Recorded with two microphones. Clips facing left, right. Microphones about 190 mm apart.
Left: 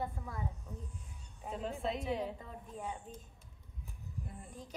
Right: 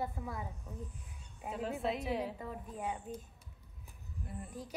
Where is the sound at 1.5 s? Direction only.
5° right (ahead or behind).